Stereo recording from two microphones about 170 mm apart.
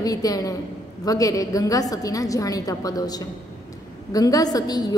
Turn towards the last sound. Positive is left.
turn(degrees=25)  # may be behind; listen again after turning